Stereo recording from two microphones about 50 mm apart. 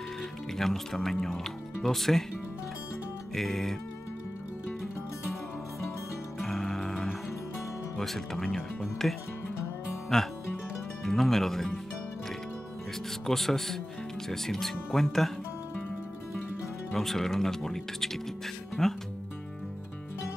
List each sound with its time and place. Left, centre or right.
0.6 s speech: centre
3.3 s speech: centre
6.4 s music: centre
8.0 s speech: centre
13.3 s speech: centre
16.9 s speech: centre